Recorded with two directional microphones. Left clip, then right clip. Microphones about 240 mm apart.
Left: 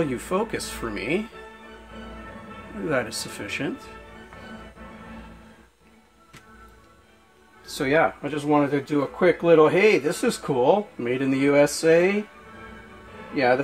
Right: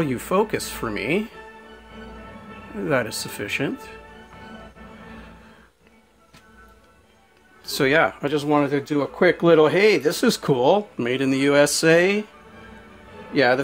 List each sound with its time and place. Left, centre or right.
0.0 s speech: right
2.9 s speech: right
7.6 s speech: right
13.3 s a man's voice: right